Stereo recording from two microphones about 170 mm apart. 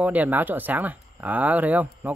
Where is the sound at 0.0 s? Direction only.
10° right (ahead or behind).